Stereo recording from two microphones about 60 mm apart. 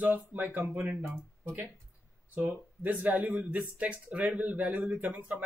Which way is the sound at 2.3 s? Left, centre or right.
Right.